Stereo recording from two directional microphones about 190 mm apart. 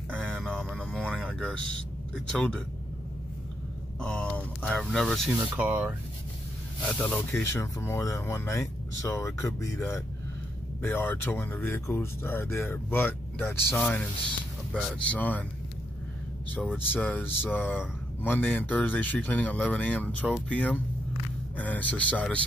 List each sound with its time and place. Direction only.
0.1 s a sound: 5° left (ahead or behind)
2.3 s speech: 5° left (ahead or behind)
4.0 s speech: 5° left (ahead or behind)
5.6 s speech: 10° right (ahead or behind)
6.9 s speech: 5° left (ahead or behind)
16.7 s speech: 10° left (ahead or behind)